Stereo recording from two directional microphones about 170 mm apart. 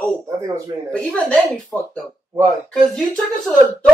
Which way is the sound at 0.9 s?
5° left (ahead or behind).